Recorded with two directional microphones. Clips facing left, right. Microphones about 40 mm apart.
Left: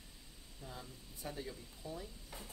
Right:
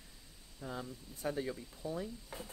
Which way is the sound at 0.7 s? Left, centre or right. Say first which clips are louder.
Right 8 dB; right.